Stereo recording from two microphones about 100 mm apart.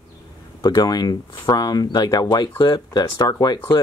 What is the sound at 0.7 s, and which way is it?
Speech, 40° left (ahead or behind).